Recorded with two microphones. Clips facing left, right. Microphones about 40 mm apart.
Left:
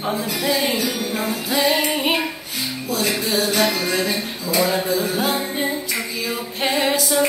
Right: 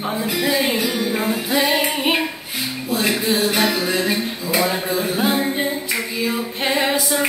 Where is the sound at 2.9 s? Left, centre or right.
Right.